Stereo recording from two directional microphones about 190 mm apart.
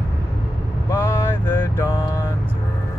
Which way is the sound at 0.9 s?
20° left (ahead or behind).